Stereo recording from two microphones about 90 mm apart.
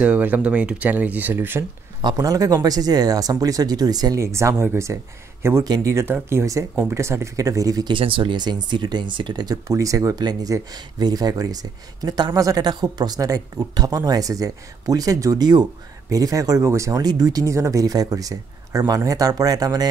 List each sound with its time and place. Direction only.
0.0 s speech: 15° right (ahead or behind)
2.0 s speech: 50° right (ahead or behind)
4.2 s speech: 35° right (ahead or behind)
5.6 s speech: 45° right (ahead or behind)
7.9 s speech: 70° right (ahead or behind); by 9.6 s 50° right (ahead or behind)
9.7 s speech: 35° right (ahead or behind)